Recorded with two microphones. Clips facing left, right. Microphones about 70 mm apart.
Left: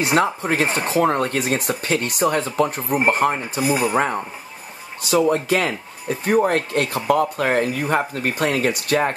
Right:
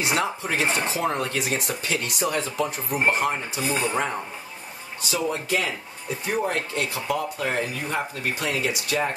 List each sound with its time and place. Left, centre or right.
0.0 s speech: left
3.6 s speech: centre
5.0 s speech: left